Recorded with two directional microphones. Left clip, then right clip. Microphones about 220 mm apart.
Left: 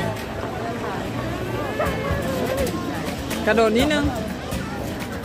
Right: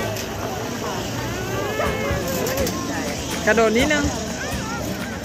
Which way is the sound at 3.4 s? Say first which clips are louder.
Right 1 dB; 5° left (ahead or behind).